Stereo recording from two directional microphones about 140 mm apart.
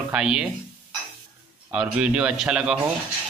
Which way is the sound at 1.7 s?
10° right (ahead or behind).